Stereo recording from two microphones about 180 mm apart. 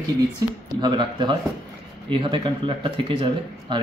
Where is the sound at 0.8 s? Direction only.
25° right (ahead or behind).